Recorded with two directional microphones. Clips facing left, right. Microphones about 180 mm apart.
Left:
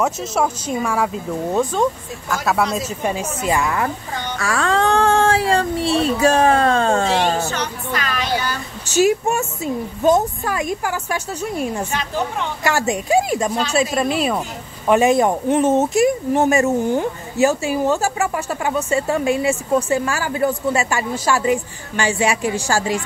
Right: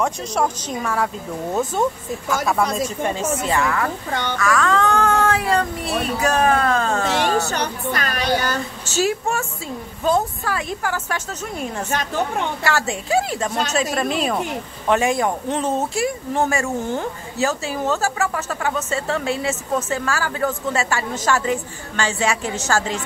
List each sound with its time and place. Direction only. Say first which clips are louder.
0.0 s speech: left 2 dB; 5° left (ahead or behind)
1.5 s speech: left 2 dB; 5° right (ahead or behind); by 3.9 s 20° left (ahead or behind)
4.4 s speech: left 1 dB; 30° left (ahead or behind)
7.4 s speech: right 1 dB; 45° right (ahead or behind)
8.8 s speech: left 6 dB; 15° left (ahead or behind)
12.6 s speech: left 7 dB; 15° left (ahead or behind)
14.9 s speech: left 4 dB; 20° left (ahead or behind)